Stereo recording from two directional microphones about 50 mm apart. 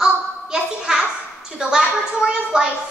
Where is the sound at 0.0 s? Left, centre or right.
Centre.